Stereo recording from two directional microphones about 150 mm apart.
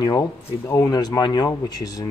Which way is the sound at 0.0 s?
25° left (ahead or behind).